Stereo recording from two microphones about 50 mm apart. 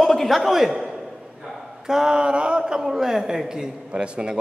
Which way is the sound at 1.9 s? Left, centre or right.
Centre.